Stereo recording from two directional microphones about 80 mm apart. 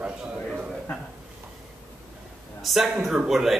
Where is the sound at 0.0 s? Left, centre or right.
Centre.